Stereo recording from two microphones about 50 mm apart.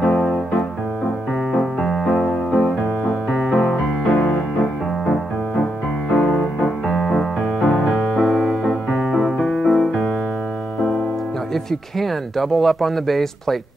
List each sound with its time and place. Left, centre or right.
0.0 s music: centre
1.5 s music: centre
5.0 s music: centre
11.5 s speech: centre